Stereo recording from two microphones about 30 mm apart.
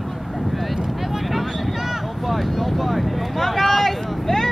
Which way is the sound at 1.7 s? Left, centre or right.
Centre.